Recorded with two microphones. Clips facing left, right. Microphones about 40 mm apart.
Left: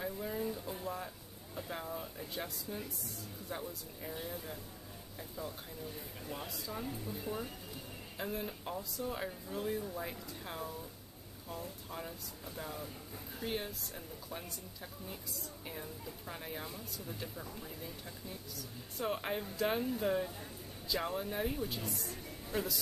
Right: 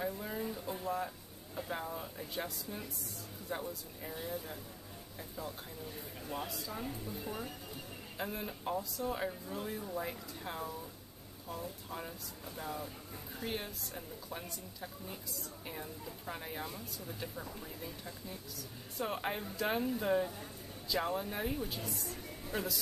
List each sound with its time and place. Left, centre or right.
0.0 s speech: centre
6.2 s speech: centre